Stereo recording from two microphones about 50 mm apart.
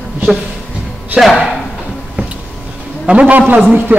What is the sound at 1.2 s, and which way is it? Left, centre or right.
Speech, centre.